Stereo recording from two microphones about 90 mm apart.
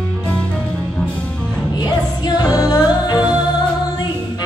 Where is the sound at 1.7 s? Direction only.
50° left (ahead or behind).